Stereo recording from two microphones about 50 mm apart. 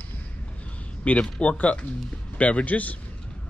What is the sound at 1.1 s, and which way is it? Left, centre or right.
A man's voice, left.